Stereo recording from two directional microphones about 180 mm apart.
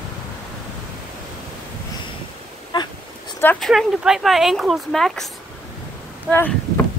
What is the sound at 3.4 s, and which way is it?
Speech, 10° left (ahead or behind).